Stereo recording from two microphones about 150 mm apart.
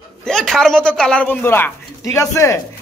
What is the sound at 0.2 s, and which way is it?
Speech, 5° left (ahead or behind).